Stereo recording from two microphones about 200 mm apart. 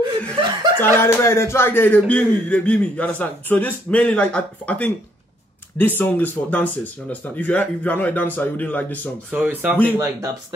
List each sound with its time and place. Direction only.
0.0 s chuckle: 25° right (ahead or behind)
0.9 s speech: 10° left (ahead or behind)
9.3 s speech: 10° right (ahead or behind)